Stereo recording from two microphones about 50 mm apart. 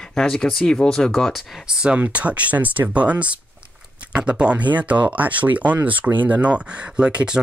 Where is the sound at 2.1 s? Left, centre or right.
Right.